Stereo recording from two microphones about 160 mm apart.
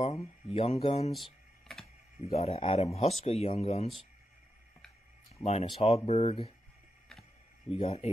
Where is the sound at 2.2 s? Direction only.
40° left (ahead or behind).